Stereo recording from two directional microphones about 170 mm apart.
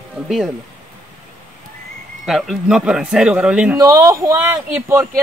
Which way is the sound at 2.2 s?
5° right (ahead or behind).